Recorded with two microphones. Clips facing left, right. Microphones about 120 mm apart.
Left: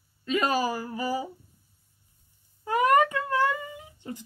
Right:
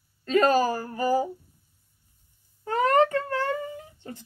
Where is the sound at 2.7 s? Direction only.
15° left (ahead or behind).